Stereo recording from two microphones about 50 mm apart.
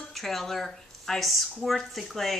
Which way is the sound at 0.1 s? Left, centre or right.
Centre.